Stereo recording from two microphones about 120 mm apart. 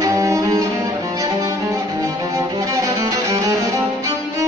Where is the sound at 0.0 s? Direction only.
30° right (ahead or behind).